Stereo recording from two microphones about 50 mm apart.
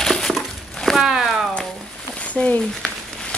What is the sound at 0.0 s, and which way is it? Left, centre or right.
Crumpling, centre.